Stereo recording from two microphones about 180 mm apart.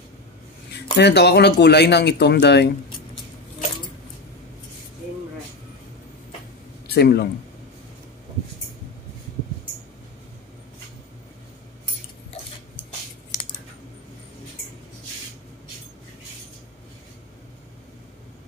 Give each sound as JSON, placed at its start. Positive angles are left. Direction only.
{"t": 0.9, "sound": "speech", "side_deg": 70}
{"t": 6.9, "sound": "speech", "side_deg": 65}